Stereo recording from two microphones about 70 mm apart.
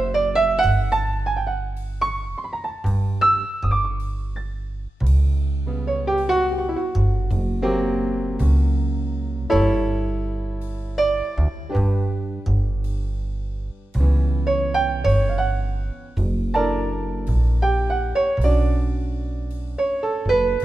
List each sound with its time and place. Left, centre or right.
0.0 s music: centre
5.7 s music: centre
9.5 s music: centre
13.9 s music: centre
16.2 s music: centre
18.7 s music: right
19.8 s music: centre